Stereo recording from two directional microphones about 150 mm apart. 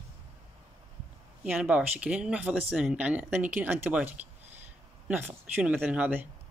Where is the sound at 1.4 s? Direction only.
5° right (ahead or behind).